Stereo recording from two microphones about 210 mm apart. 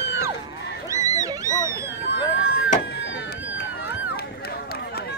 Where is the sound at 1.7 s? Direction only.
45° left (ahead or behind).